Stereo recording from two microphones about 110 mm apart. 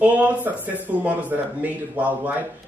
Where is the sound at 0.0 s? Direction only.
15° right (ahead or behind).